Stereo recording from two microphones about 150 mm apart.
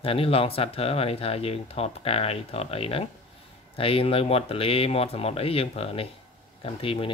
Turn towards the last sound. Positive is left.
turn(degrees=35)  # may be behind; listen again after turning